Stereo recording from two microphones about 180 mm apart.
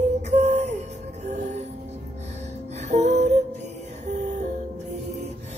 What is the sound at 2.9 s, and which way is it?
Music, 40° right (ahead or behind).